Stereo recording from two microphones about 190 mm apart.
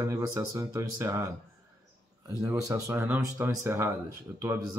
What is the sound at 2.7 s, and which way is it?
Speech, 15° right (ahead or behind).